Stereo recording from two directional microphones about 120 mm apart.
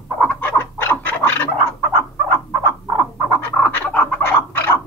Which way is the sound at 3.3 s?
10° left (ahead or behind).